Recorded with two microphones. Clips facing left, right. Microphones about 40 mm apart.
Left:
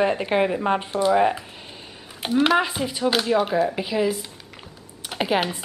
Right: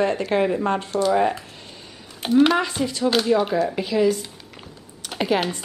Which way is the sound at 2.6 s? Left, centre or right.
Centre.